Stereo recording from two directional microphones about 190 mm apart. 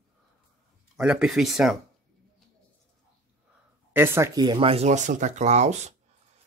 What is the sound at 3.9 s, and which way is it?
Speech, 10° right (ahead or behind).